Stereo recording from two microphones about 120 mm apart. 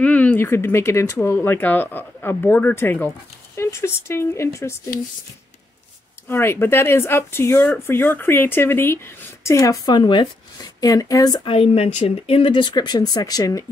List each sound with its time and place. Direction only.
0.0 s speech: 10° left (ahead or behind)
6.2 s speech: 20° left (ahead or behind)
7.5 s speech: 5° left (ahead or behind)
7.8 s speech: 20° left (ahead or behind)
11.4 s speech: 50° left (ahead or behind); by 13.7 s 30° left (ahead or behind)